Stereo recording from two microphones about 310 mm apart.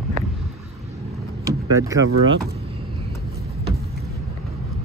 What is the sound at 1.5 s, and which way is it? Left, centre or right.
Power windows, centre.